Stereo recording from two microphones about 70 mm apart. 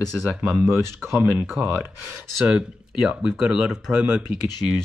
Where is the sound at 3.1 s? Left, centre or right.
Centre.